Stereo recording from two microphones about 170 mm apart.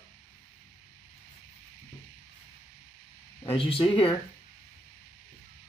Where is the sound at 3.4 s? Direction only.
30° left (ahead or behind).